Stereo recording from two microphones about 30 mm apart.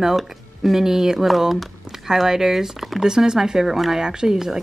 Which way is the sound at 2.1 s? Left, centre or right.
Centre.